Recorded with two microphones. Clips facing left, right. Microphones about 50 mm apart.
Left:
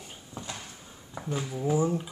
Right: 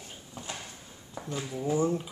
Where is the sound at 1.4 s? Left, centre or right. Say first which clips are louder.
Left 1 dB; centre.